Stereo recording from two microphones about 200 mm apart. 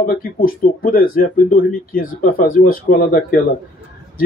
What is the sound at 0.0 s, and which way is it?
Speech, 45° left (ahead or behind).